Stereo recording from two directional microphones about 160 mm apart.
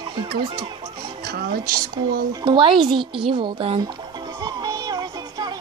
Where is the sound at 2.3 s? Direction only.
30° right (ahead or behind).